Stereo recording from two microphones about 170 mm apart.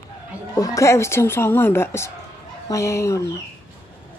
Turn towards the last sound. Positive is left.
turn(degrees=15)  # may be behind; listen again after turning